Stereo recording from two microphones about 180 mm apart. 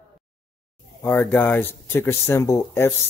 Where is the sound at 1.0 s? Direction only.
10° left (ahead or behind).